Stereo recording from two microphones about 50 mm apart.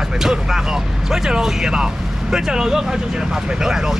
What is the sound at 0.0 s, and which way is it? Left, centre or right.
Speech, centre.